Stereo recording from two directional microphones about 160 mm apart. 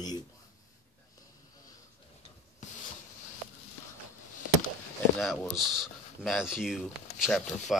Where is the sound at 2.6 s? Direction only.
50° left (ahead or behind).